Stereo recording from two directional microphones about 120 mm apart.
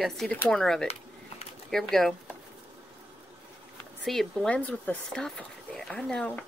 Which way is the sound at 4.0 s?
Centre (ahead or behind).